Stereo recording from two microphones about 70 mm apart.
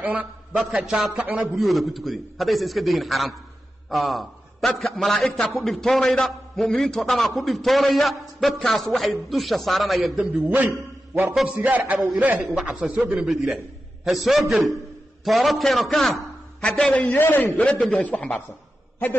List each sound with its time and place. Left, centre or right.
0.0 s a man's voice: right
1.5 s a man's voice: centre
10.4 s a man's voice: right
12.4 s a man's voice: centre
16.9 s a man's voice: left